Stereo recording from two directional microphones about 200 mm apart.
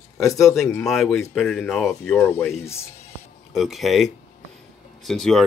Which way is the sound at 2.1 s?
10° left (ahead or behind).